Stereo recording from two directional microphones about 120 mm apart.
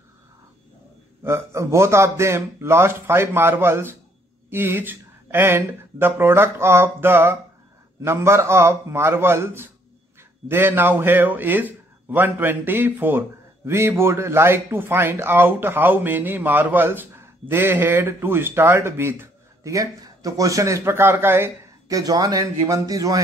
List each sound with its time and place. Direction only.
1.2 s a man's voice: 25° right (ahead or behind)